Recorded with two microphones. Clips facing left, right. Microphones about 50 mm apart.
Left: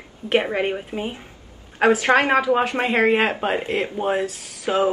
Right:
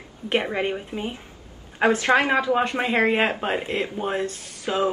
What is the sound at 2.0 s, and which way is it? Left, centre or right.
Speech, left.